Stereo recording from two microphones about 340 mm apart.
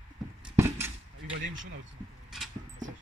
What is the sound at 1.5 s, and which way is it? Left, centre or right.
Speech, right.